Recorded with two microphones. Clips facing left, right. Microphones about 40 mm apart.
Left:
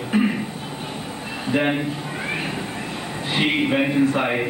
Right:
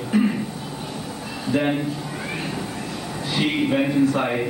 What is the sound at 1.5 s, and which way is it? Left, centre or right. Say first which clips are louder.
Speech: left 1 dB; left.